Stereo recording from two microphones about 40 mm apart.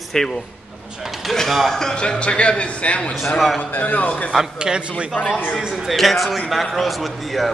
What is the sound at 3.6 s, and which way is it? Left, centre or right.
Speech, left.